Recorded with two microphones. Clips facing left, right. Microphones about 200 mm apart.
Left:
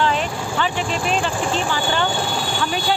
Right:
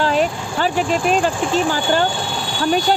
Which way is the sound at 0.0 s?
40° right (ahead or behind).